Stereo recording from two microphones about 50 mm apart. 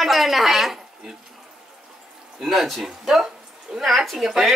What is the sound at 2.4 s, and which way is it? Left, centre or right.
Speech, centre.